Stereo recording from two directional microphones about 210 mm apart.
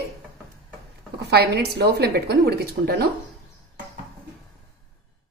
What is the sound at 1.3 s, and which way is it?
A woman's voice, 50° right (ahead or behind).